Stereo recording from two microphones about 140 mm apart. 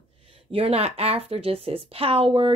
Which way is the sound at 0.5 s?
45° right (ahead or behind).